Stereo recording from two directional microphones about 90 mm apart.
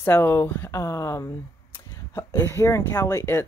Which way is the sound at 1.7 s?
25° left (ahead or behind).